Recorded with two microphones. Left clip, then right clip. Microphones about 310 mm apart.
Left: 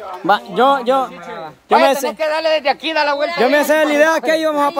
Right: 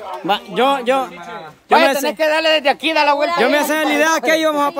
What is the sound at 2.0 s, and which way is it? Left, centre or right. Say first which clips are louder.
Speech: right 2 dB; right.